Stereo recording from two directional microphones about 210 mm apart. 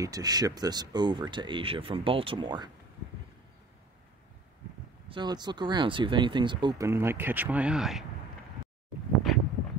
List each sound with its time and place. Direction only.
0.0 s speech: 20° right (ahead or behind)
5.1 s speech: 20° right (ahead or behind); by 8.0 s centre (ahead or behind)